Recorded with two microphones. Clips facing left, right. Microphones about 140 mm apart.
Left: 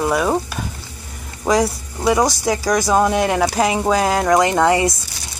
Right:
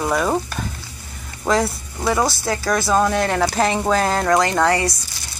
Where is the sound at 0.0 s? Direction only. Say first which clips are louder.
Left 2 dB; 5° left (ahead or behind).